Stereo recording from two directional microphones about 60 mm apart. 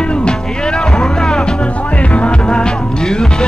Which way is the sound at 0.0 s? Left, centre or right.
Centre.